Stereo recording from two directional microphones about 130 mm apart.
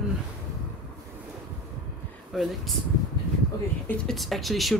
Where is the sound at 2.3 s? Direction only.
Centre (ahead or behind).